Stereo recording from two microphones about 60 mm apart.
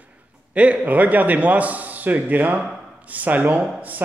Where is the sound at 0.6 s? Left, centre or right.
Right.